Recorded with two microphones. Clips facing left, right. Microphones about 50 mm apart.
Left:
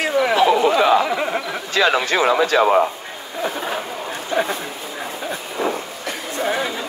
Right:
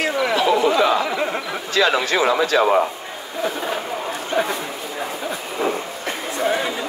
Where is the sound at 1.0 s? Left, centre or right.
Centre.